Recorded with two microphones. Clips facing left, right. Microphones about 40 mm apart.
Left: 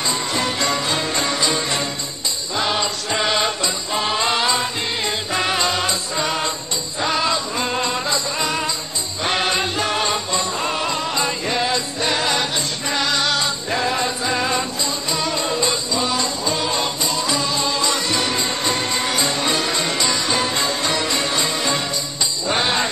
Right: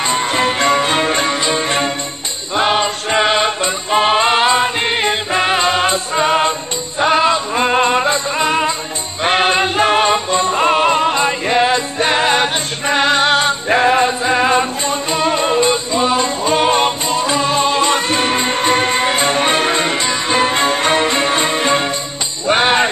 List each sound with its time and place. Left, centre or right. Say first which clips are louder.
0.0 s music: right 6 dB; right